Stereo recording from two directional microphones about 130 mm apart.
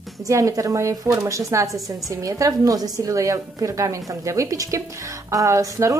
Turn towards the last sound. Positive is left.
turn(degrees=-25)  # may be behind; listen again after turning